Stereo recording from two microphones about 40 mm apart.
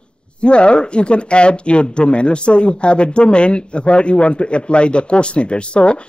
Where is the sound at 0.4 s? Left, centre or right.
Left.